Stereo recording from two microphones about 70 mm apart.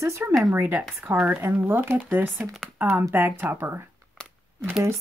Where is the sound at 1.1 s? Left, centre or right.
Right.